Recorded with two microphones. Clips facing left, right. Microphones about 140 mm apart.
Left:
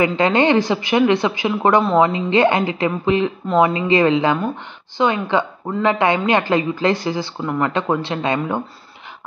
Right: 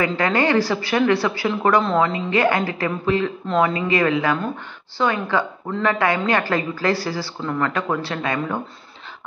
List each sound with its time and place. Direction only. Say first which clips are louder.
0.0 s a woman's voice: left 4 dB; 20° left (ahead or behind)